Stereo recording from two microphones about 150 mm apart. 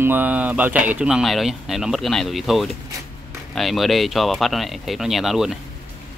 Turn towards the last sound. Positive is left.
turn(degrees=0)  # may be behind; listen again after turning